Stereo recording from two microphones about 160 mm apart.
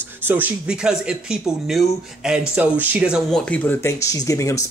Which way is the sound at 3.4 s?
10° left (ahead or behind).